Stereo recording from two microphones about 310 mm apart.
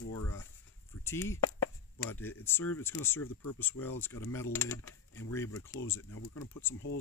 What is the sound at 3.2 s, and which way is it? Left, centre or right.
Speech, left.